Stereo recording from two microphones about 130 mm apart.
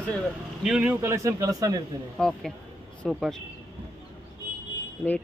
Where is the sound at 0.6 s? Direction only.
5° right (ahead or behind); by 1.8 s 25° right (ahead or behind).